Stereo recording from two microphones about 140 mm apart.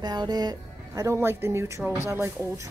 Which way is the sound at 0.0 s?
30° right (ahead or behind).